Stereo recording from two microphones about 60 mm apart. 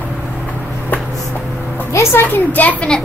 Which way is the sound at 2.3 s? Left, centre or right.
Left.